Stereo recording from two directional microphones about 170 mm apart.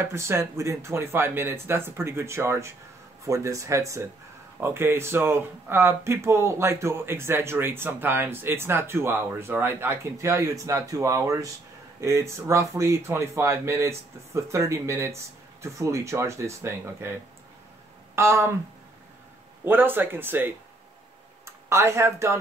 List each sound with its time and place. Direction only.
0.0 s speech: 15° right (ahead or behind)
18.1 s speech: 15° right (ahead or behind)
19.6 s speech: 10° right (ahead or behind)